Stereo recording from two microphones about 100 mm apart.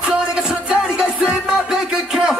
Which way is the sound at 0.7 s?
10° right (ahead or behind).